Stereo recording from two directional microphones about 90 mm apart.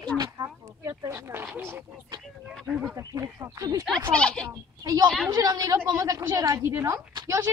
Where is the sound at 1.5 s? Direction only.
25° right (ahead or behind).